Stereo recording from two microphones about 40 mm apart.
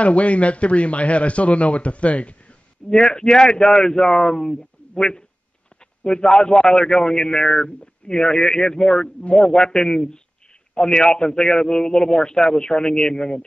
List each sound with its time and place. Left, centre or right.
0.0 s speech: left
2.9 s a man's voice: centre